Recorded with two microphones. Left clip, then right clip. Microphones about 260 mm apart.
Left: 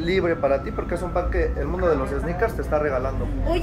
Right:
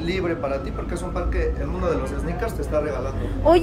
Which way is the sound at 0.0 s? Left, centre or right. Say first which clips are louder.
Left 4 dB; left.